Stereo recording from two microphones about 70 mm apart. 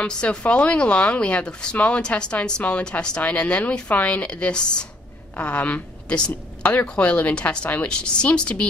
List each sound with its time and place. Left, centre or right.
0.0 s a woman's voice: centre